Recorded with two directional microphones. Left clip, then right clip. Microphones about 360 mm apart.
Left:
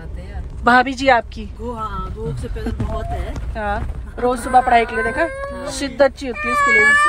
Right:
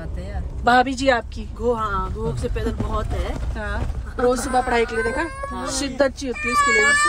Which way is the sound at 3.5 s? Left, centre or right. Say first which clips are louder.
Left 10 dB; centre.